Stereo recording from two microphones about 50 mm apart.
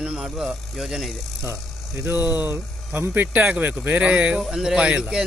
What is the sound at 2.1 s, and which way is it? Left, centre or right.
Speech, right.